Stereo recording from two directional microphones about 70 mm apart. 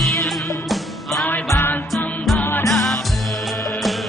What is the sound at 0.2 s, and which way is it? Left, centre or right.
Music, centre.